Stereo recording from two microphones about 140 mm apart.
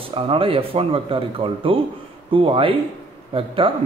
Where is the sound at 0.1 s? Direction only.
40° right (ahead or behind).